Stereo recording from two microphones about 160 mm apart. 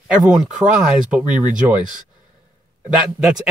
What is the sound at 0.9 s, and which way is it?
Speech, 10° right (ahead or behind).